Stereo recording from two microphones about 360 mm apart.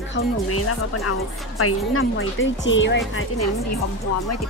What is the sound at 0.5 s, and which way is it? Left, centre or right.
Speech, left.